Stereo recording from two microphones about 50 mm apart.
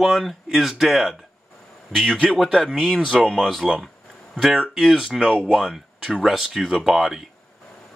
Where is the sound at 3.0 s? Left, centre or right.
Centre.